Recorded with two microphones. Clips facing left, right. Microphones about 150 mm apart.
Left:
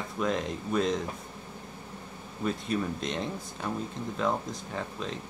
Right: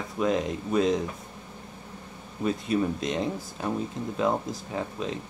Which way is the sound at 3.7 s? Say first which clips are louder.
Right 4 dB; 15° right (ahead or behind).